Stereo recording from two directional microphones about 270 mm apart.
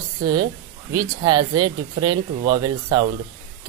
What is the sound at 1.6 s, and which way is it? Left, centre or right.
A woman's voice, centre.